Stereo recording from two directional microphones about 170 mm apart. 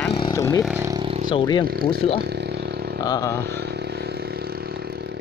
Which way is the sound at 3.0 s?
20° left (ahead or behind).